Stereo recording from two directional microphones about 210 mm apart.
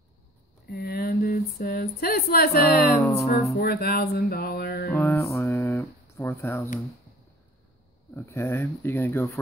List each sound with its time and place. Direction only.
0.7 s speech: 45° left (ahead or behind)
3.5 s music: 45° left (ahead or behind)
4.9 s speech: 10° left (ahead or behind)
8.1 s speech: 10° left (ahead or behind)